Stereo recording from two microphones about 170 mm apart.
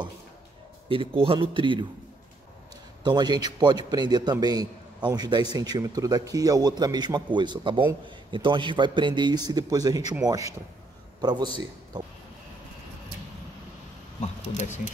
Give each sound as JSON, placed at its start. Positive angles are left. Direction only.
{"t": 0.8, "sound": "speech", "side_deg": -30}
{"t": 3.0, "sound": "a man's voice", "side_deg": -25}